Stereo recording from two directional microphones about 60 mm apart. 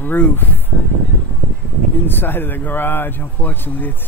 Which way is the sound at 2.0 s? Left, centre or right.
Left.